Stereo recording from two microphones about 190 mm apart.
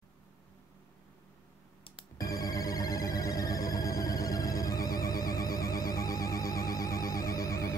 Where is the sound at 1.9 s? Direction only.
25° left (ahead or behind).